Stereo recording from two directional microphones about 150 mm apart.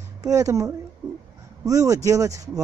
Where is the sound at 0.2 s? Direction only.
25° right (ahead or behind).